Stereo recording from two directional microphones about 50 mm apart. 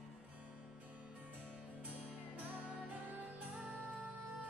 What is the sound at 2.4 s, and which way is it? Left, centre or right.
Music, right.